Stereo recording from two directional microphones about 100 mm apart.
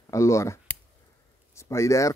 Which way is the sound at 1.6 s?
30° left (ahead or behind).